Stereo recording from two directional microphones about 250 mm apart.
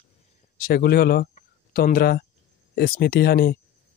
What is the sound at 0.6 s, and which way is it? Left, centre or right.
Speech, left.